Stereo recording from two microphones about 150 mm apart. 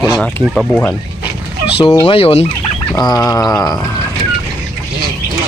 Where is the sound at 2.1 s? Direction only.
40° left (ahead or behind).